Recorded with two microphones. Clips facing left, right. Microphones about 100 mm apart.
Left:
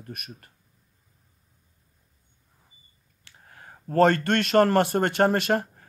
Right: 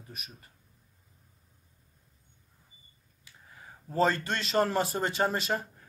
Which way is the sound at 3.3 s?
70° left (ahead or behind).